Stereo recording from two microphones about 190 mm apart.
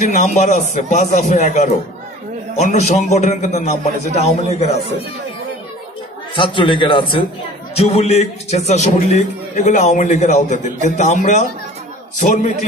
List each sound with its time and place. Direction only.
0.0 s a man's voice: 40° left (ahead or behind)
6.3 s a man's voice: 25° left (ahead or behind)